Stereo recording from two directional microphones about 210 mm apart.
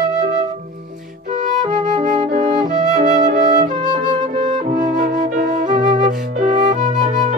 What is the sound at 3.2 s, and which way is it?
Flute, 35° right (ahead or behind).